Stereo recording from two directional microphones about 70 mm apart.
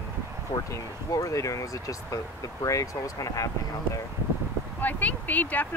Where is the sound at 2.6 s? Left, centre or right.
Left.